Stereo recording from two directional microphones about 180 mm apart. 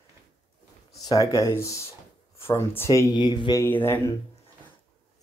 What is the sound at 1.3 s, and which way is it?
Speech, 15° left (ahead or behind).